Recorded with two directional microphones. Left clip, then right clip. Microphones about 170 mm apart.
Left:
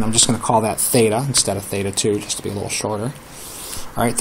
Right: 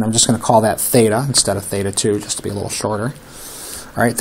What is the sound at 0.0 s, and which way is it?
Speech, 20° right (ahead or behind).